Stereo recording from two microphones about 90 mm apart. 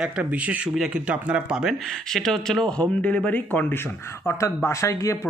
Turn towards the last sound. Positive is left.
turn(degrees=40)  # may be behind; listen again after turning